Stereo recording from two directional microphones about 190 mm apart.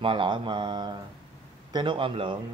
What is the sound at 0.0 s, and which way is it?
A man's voice, 25° right (ahead or behind).